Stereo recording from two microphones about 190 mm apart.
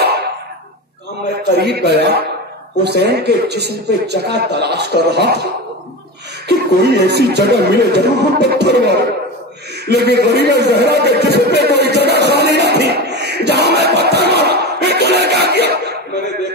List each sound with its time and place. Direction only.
1.4 s a man's voice: 60° right (ahead or behind)
6.8 s a man's voice: 60° right (ahead or behind)